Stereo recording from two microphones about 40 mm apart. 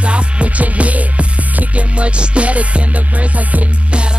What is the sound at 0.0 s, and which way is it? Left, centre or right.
Music, right.